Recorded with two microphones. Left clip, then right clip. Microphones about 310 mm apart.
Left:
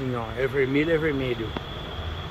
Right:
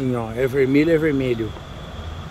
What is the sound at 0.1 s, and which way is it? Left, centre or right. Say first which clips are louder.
Speech: right 4 dB; right.